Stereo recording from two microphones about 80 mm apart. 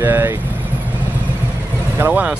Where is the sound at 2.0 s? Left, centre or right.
Right.